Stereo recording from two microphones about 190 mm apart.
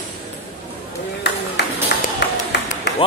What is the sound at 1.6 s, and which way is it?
Music, 60° left (ahead or behind).